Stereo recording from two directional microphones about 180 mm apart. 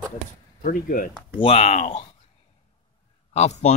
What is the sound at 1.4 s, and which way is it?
Speech, 35° left (ahead or behind).